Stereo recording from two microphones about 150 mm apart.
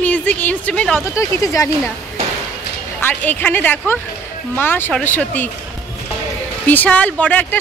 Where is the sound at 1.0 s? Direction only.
20° left (ahead or behind).